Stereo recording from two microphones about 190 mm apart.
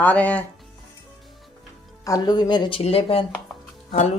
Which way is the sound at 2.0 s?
20° left (ahead or behind).